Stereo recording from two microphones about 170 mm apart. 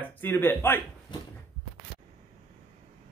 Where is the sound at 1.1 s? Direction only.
25° left (ahead or behind).